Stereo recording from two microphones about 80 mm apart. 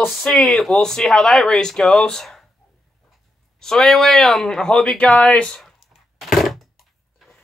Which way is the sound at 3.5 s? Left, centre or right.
Centre.